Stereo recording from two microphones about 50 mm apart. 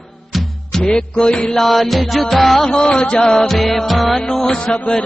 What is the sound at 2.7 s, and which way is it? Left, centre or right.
Music, left.